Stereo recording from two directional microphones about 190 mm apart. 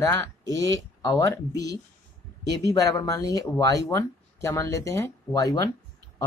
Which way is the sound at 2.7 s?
20° left (ahead or behind).